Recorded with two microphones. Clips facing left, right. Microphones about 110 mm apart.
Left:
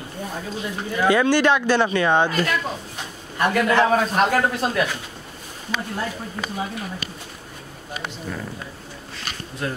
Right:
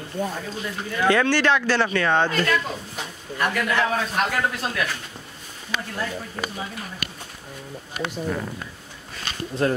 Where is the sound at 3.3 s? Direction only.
30° left (ahead or behind).